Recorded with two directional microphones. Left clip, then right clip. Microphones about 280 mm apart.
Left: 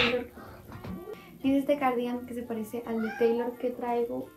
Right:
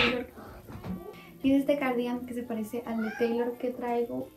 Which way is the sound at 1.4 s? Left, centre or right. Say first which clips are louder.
Even; centre.